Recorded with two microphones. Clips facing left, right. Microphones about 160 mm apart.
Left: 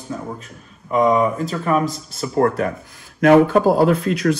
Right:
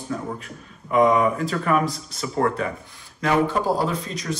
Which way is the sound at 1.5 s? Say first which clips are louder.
Left 2 dB; 25° left (ahead or behind).